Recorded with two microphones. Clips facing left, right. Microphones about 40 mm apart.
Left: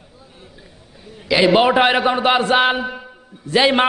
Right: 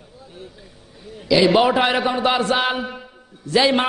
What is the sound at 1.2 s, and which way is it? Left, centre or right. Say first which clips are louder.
A man's voice: left 1 dB; left.